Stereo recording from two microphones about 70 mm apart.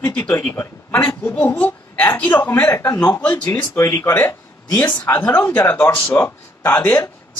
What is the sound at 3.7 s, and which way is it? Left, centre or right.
Speech, left.